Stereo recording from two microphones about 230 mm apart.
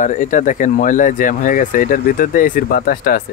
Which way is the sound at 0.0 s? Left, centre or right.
Left.